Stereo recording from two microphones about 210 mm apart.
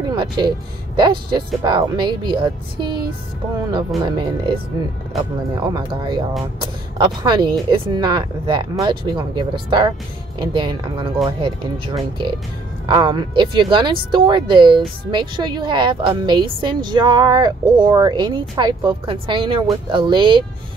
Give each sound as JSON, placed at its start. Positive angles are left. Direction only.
{"t": 0.1, "sound": "a woman's voice", "side_deg": -20}
{"t": 4.0, "sound": "a woman's voice", "side_deg": -20}